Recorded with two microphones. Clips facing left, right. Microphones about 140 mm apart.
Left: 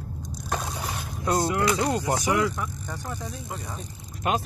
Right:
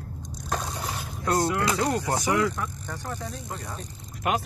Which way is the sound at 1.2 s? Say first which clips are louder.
Left 1 dB; 20° left (ahead or behind).